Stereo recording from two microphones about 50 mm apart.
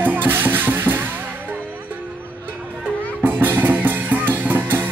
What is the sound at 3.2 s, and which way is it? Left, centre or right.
Music, right.